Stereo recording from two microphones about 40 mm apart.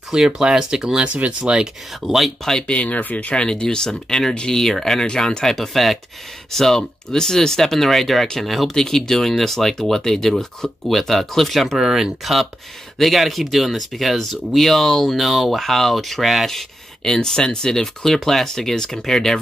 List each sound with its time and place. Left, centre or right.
0.1 s speech: centre
1.0 s speech: right
2.0 s speech: centre
2.6 s speech: left
3.0 s speech: left
3.3 s speech: left; by 5.0 s centre
5.0 s speech: centre
8.7 s speech: centre
11.8 s speech: centre
17.0 s speech: centre